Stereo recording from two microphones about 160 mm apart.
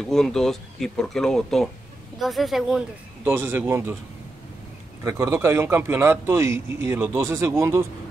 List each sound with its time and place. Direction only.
0.0 s speech: 5° left (ahead or behind)
3.3 s a man's voice: 15° right (ahead or behind)
5.0 s a man's voice: 15° right (ahead or behind)